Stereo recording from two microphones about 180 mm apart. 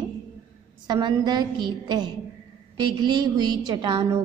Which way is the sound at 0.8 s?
25° right (ahead or behind).